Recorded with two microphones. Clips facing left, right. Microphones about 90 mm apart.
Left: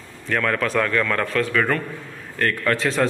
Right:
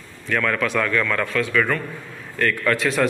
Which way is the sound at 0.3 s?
35° left (ahead or behind).